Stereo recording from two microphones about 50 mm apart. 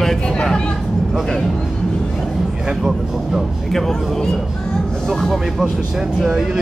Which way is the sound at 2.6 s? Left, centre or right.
Centre.